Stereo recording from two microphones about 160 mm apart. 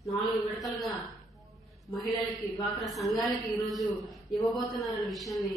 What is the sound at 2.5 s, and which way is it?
A man's voice, centre (ahead or behind).